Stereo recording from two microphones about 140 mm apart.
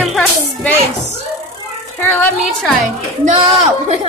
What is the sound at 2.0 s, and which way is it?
Speech, 15° left (ahead or behind).